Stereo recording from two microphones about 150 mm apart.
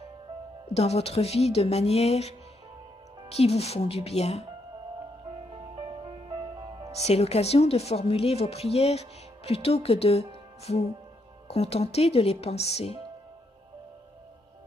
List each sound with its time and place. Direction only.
0.7 s speech: 45° left (ahead or behind)
7.1 s speech: 45° left (ahead or behind)